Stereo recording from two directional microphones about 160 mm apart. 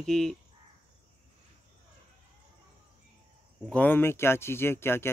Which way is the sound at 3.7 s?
10° left (ahead or behind).